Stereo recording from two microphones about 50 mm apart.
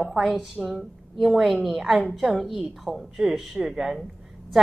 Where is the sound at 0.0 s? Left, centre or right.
Centre.